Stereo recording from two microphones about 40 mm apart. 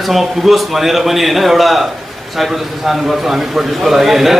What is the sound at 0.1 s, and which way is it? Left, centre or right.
A man's voice, centre.